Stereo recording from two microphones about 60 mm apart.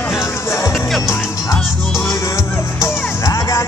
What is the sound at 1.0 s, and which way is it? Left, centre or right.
Music, left.